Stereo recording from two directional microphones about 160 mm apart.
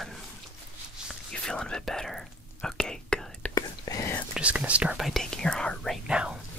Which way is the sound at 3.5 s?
20° left (ahead or behind).